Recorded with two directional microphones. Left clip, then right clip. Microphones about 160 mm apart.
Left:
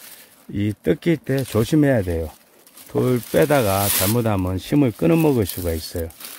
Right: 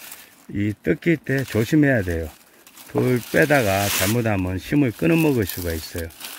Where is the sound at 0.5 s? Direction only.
25° left (ahead or behind).